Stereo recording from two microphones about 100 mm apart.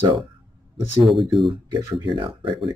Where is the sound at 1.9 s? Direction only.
60° right (ahead or behind).